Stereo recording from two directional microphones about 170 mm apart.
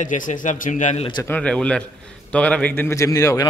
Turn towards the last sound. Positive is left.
turn(degrees=20)  # may be behind; listen again after turning